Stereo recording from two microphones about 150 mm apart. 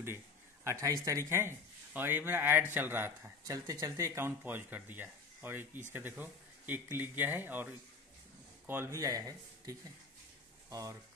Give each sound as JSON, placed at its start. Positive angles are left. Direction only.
{"t": 0.7, "sound": "speech", "side_deg": -20}